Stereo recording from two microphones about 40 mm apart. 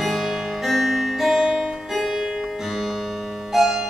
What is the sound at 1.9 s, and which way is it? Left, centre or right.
Music, centre.